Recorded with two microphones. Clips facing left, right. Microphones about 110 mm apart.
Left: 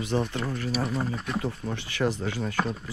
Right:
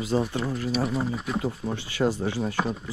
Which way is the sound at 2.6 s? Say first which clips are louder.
Even; centre (ahead or behind).